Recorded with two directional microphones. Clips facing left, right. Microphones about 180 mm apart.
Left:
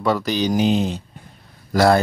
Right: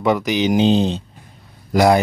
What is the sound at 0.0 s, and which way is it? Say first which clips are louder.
Speech: right 3 dB; 15° right (ahead or behind).